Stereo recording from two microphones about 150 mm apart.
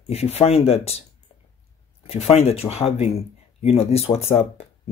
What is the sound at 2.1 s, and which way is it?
Speech, 45° left (ahead or behind).